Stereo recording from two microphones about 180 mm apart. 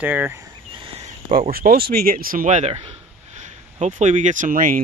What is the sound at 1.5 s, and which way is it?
Speech, 55° right (ahead or behind).